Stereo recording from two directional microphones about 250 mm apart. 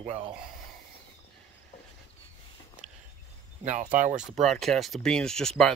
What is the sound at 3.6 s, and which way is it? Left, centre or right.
Speech, right.